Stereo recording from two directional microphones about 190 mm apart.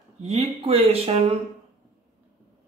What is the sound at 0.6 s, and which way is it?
Speech, 30° right (ahead or behind).